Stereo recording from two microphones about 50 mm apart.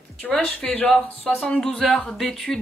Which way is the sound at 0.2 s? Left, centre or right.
Centre.